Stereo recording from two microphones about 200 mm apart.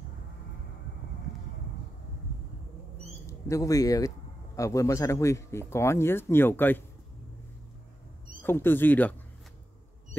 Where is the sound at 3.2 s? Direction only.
15° left (ahead or behind).